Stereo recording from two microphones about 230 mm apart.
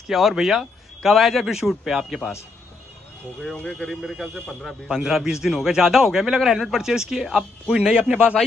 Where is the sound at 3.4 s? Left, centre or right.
Centre.